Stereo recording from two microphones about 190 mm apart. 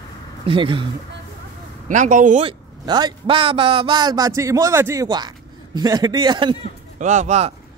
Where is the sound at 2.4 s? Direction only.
20° right (ahead or behind).